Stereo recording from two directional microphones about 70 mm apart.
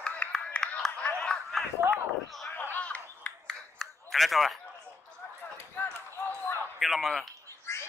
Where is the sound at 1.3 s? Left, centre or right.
Centre.